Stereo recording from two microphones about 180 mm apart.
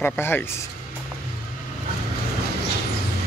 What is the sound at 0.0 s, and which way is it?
Speech, 10° left (ahead or behind).